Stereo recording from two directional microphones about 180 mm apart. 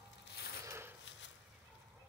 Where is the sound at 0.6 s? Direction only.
15° right (ahead or behind).